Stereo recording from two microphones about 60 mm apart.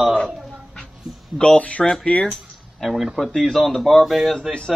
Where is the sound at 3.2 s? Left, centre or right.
Centre.